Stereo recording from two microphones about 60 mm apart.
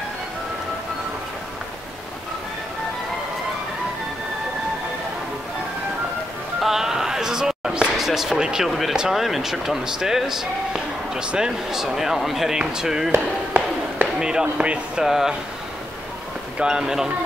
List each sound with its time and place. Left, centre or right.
6.6 s a sound: centre
8.0 s speech: centre
13.5 s a sound: right
14.2 s speech: centre
15.0 s speech: centre
16.5 s speech: centre